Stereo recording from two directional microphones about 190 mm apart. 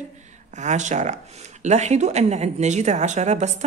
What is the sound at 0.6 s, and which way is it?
Speech, 40° right (ahead or behind).